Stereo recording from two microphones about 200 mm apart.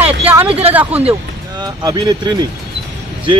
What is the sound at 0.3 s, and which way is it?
Speech, 10° right (ahead or behind).